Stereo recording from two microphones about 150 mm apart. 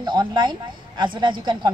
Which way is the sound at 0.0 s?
30° right (ahead or behind).